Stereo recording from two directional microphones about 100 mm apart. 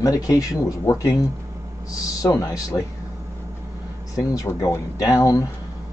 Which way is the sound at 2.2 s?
35° left (ahead or behind).